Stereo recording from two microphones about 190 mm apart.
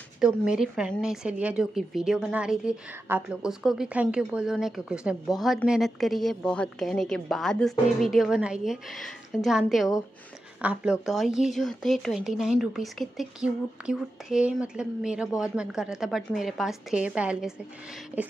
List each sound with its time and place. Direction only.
0.2 s speech: 5° right (ahead or behind)